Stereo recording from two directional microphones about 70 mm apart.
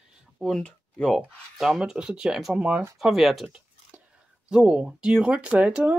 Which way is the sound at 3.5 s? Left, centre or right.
Centre.